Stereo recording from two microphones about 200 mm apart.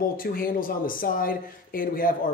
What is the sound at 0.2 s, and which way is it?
A man's voice, 45° left (ahead or behind).